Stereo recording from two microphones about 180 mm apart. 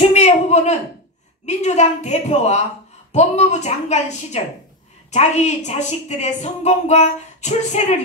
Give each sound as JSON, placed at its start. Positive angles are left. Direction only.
{"t": 0.1, "sound": "a woman's voice", "side_deg": 40}